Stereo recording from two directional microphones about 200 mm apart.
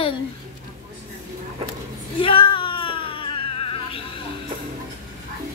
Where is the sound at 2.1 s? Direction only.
25° left (ahead or behind).